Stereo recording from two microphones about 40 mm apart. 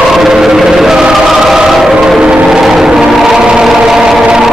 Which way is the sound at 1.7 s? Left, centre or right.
Centre.